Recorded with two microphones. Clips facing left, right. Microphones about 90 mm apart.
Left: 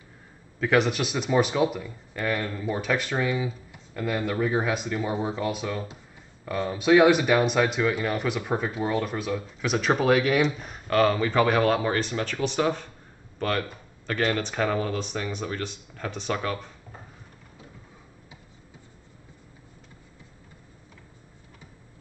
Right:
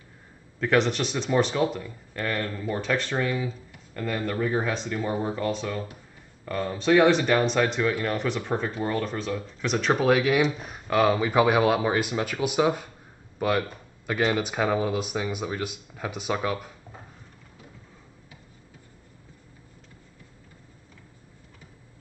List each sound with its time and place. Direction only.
0.6 s speech: 5° left (ahead or behind)